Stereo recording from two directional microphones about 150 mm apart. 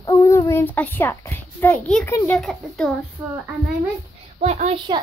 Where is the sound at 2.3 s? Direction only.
Centre (ahead or behind).